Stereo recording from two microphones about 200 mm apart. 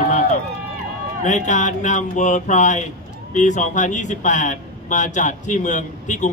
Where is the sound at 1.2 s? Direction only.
40° left (ahead or behind).